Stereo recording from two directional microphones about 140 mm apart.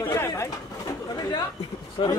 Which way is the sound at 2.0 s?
35° left (ahead or behind).